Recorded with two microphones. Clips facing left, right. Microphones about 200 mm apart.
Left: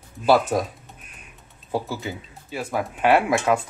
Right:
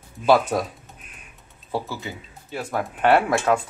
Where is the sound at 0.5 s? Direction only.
15° left (ahead or behind).